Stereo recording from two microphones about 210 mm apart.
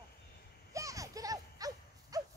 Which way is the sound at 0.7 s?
15° right (ahead or behind).